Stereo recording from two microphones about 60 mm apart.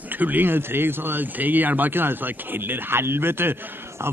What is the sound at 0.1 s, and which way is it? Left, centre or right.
Speech, right.